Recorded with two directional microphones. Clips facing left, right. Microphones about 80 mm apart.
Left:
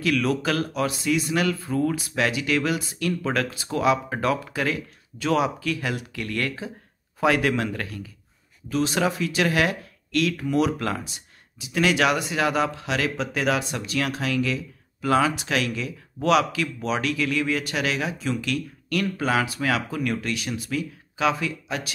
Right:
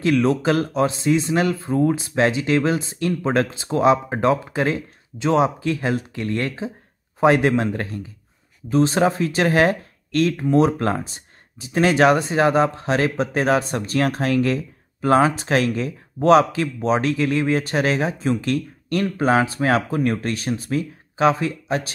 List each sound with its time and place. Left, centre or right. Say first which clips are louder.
0.0 s speech: right 5 dB; right